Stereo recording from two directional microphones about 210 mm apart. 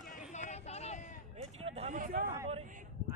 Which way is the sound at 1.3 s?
30° right (ahead or behind).